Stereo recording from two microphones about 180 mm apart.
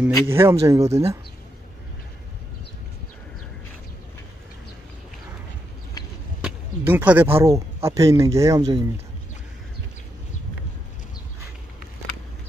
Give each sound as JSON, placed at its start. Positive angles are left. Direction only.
{"t": 0.3, "sound": "speech", "side_deg": -15}
{"t": 6.4, "sound": "speech", "side_deg": -10}